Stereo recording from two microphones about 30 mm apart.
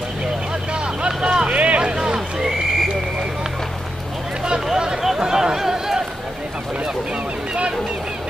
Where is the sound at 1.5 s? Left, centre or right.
Right.